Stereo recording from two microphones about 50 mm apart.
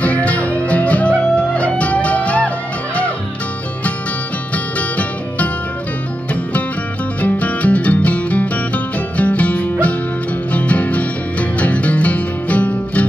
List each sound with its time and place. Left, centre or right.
0.0 s music: left
4.7 s music: left
7.2 s music: left